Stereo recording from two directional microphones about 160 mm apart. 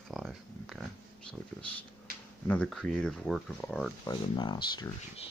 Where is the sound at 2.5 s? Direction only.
5° left (ahead or behind).